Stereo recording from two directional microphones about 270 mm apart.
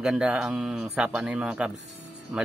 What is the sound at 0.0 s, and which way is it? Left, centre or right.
A man's voice, centre.